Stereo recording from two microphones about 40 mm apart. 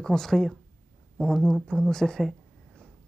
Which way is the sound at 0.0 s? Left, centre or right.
Centre.